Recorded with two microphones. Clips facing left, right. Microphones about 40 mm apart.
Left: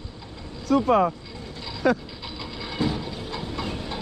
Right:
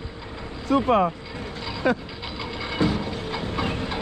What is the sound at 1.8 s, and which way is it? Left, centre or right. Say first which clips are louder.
Mechanisms: left 1 dB; centre.